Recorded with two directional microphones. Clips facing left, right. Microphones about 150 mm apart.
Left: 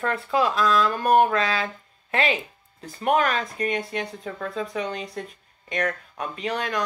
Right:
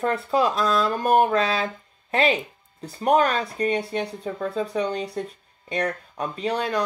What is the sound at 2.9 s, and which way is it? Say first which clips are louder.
Speech: right 2 dB; 35° right (ahead or behind).